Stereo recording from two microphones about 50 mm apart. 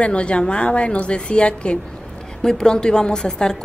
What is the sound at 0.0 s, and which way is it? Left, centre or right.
A woman's voice, left.